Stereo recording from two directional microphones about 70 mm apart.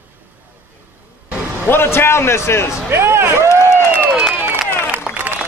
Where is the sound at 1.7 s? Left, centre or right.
Left.